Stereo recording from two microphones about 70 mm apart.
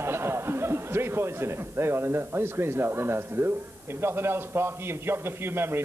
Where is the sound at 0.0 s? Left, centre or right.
Right.